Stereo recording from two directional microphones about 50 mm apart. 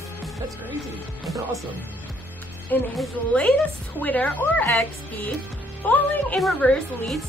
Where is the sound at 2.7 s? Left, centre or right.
Left.